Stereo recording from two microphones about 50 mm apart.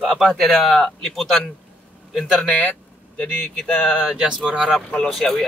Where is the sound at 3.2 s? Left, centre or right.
Left.